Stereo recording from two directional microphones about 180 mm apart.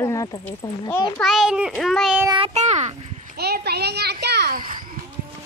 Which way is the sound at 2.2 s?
25° right (ahead or behind).